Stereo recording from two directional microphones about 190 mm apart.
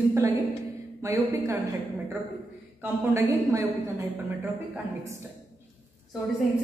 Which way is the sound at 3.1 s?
15° right (ahead or behind).